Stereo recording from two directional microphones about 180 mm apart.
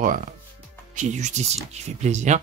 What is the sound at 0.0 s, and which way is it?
Speech, 45° right (ahead or behind).